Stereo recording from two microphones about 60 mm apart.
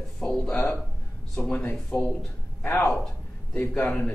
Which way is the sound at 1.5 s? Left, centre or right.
Left.